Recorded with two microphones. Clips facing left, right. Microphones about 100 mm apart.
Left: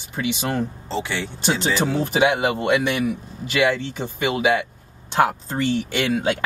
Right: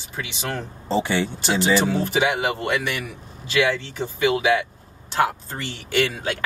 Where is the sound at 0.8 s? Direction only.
15° right (ahead or behind).